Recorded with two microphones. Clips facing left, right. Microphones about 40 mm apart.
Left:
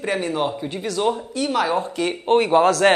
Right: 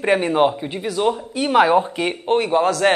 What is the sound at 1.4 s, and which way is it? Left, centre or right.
Speech, right.